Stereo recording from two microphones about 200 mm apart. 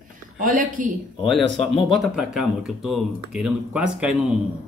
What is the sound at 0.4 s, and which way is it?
Speech, 40° right (ahead or behind).